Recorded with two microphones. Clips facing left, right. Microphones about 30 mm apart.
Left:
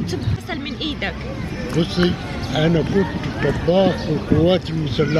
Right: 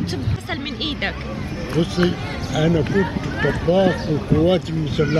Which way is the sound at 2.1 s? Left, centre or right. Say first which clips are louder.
Left 1 dB; centre.